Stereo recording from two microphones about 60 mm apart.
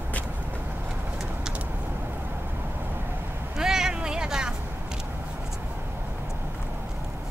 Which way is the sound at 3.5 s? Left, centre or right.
Centre.